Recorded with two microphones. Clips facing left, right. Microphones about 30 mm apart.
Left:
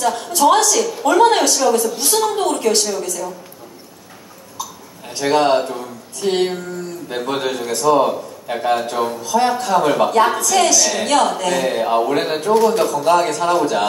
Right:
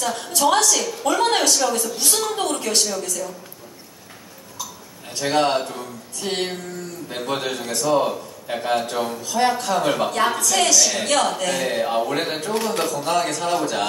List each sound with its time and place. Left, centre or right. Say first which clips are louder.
0.0 s a woman's voice: left 5 dB; centre
5.1 s a man's voice: left 5 dB; centre
13.2 s a woman's voice: left 5 dB; centre